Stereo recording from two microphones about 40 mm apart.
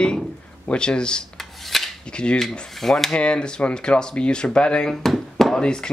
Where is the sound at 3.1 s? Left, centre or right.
Left.